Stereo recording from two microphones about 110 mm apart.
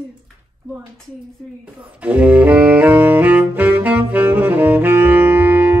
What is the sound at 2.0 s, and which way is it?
Saxophone, 15° right (ahead or behind).